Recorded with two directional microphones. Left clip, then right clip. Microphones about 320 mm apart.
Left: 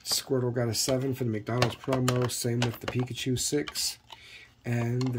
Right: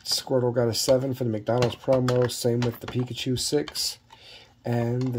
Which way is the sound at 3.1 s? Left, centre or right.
Centre.